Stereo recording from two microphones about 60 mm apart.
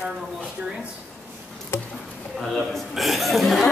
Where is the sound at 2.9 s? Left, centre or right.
Centre.